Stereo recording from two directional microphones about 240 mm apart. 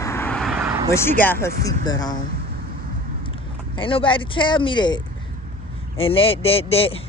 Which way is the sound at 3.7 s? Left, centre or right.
Left.